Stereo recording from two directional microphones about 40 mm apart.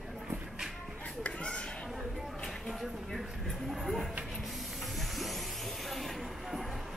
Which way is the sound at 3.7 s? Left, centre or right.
Centre.